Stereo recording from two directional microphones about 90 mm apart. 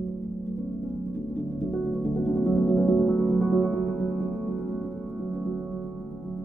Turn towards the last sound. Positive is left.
turn(degrees=5)  # may be behind; listen again after turning